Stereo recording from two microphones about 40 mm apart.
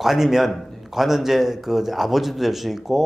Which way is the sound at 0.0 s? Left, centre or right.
Centre.